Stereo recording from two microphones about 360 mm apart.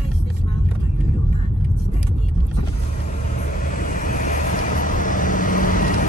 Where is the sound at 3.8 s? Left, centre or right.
Left.